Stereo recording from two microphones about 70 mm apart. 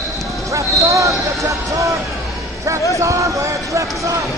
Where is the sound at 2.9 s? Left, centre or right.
Right.